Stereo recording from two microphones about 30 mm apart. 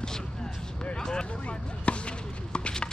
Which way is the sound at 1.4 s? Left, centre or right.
Left.